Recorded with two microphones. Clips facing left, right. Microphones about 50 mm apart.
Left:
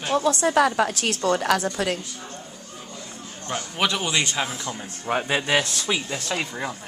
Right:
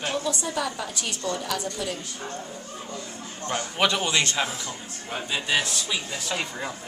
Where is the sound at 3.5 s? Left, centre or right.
Centre.